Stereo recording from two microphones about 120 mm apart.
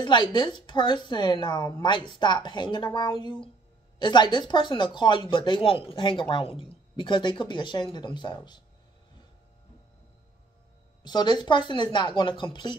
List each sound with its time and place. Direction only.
0.0 s speech: 40° left (ahead or behind)
11.1 s speech: 35° left (ahead or behind)